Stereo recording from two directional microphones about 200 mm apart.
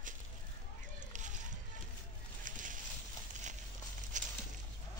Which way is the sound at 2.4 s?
40° right (ahead or behind).